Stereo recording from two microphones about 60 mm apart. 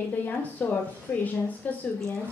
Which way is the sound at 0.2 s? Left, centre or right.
Left.